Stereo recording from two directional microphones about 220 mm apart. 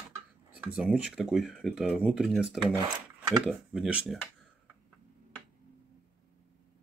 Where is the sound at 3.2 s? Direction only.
20° right (ahead or behind).